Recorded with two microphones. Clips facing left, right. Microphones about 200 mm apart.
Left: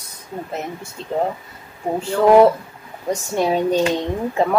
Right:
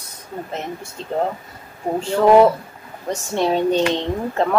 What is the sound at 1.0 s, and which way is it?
Speech, 35° right (ahead or behind).